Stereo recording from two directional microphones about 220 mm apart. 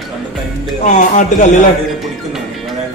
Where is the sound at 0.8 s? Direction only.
35° left (ahead or behind).